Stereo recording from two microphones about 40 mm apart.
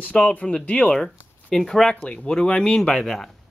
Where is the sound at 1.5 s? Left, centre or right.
Centre.